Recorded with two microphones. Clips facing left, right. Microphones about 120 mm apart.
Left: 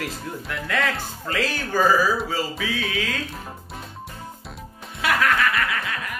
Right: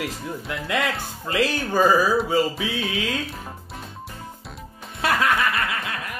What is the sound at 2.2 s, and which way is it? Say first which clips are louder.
Music: right 5 dB; 20° right (ahead or behind).